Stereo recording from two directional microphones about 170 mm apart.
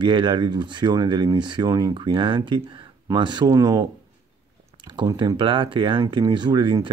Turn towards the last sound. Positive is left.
turn(degrees=-25)  # may be behind; listen again after turning